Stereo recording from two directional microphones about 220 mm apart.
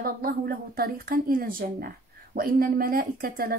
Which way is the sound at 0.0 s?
40° right (ahead or behind).